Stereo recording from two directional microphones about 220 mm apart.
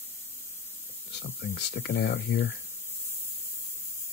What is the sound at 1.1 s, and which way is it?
Speech, 50° left (ahead or behind).